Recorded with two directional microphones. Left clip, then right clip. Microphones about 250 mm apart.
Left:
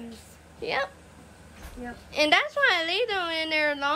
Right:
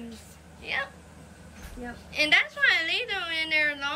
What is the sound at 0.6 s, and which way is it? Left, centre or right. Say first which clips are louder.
A woman's voice: left 3 dB; centre.